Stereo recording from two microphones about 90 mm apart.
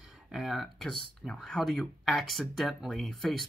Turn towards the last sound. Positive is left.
turn(degrees=5)  # may be behind; listen again after turning